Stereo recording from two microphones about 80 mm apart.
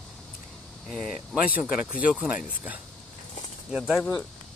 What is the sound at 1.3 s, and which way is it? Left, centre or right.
Speech, centre.